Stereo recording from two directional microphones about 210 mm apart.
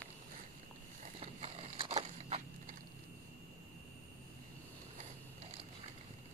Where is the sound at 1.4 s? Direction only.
30° right (ahead or behind).